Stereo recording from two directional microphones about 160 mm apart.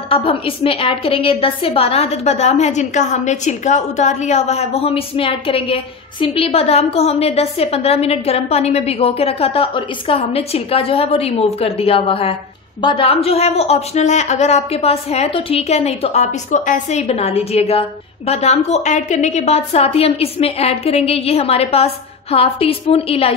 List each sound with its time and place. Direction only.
0.1 s a woman's voice: 35° left (ahead or behind)